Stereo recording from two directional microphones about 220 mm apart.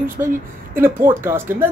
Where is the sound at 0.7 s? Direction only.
10° right (ahead or behind).